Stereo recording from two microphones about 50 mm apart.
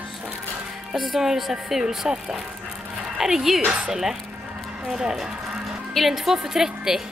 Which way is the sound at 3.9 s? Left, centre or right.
Centre.